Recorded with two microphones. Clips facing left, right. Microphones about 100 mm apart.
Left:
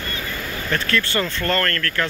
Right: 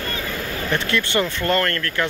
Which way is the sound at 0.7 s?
20° right (ahead or behind).